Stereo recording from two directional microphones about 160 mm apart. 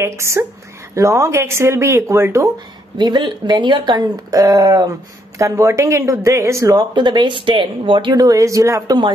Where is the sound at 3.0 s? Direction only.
30° right (ahead or behind).